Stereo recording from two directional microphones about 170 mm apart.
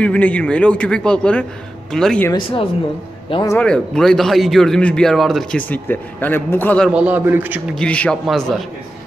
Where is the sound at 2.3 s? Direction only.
30° left (ahead or behind).